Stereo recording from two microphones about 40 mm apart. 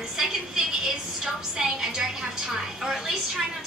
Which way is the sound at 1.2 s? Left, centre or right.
Centre.